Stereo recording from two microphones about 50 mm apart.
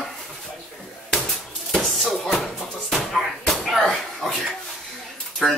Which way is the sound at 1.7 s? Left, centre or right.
Centre.